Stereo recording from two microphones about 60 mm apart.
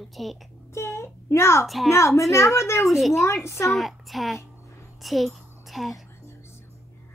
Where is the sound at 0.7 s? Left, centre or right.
Left.